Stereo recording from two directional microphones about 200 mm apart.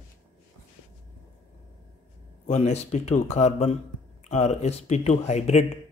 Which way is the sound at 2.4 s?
35° left (ahead or behind).